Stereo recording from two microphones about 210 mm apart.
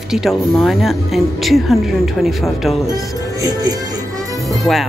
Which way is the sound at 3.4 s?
20° right (ahead or behind).